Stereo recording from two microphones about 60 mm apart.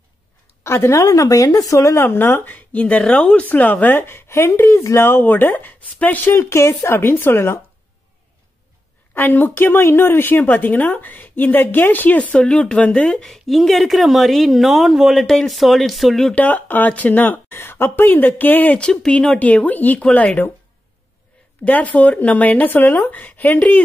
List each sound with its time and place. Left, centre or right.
0.7 s a woman's voice: left
2.0 s speech: left
2.5 s speech: left
4.0 s speech: left
6.3 s speech: left
7.0 s speech: left
9.1 s speech: left
13.2 s a woman's voice: centre
16.3 s speech: left
18.8 s speech: centre
19.3 s speech: left
21.6 s speech: left